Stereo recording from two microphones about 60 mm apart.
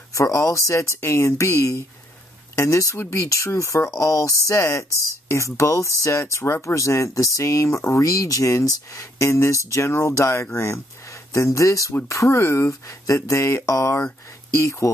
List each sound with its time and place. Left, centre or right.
0.1 s speech: left
2.5 s speech: left